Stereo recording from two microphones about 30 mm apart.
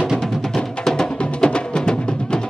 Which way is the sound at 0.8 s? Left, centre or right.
Centre.